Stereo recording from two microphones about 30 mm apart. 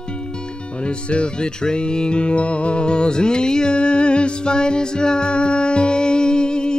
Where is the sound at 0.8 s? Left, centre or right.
Left.